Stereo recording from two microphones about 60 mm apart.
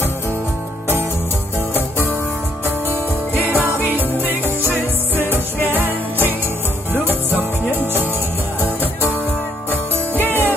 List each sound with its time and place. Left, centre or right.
2.9 s music: right
5.7 s music: right
8.5 s music: right
9.7 s music: left